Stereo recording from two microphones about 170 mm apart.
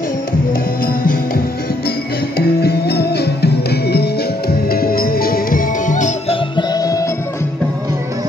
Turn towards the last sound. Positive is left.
turn(degrees=20)  # may be behind; listen again after turning